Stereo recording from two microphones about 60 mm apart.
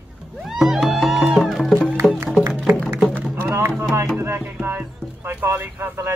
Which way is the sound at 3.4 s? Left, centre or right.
Right.